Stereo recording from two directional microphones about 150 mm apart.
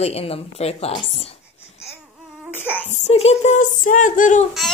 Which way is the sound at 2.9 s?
50° left (ahead or behind).